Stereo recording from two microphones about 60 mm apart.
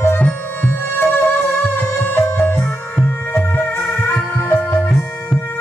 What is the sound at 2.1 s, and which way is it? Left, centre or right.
Music, left.